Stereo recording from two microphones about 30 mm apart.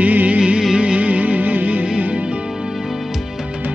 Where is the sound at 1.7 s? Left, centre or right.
Right.